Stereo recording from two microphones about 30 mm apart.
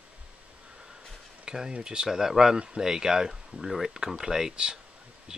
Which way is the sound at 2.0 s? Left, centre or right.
Centre.